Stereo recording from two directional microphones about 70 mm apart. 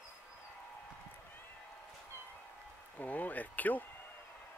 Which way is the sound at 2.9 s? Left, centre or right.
Left.